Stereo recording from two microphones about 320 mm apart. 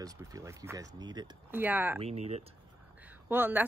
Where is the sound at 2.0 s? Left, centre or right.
Centre.